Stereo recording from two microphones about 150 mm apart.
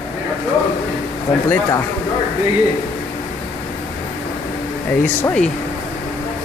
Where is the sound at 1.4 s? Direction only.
15° left (ahead or behind).